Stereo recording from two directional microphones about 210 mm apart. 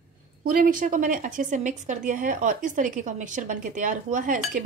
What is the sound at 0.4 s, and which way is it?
A woman's voice, 40° right (ahead or behind).